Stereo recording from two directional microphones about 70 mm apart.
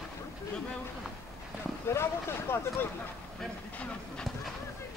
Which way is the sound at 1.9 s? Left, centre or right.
Left.